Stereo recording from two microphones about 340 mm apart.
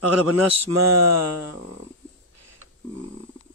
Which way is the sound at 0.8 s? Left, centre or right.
Right.